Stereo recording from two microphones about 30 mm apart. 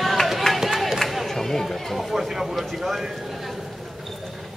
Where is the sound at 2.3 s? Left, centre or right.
Centre.